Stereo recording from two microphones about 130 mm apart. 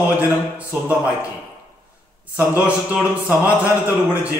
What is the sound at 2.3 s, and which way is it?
Speech, 10° right (ahead or behind).